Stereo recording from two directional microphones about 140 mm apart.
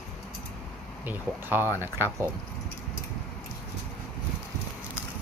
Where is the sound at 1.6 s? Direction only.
20° left (ahead or behind).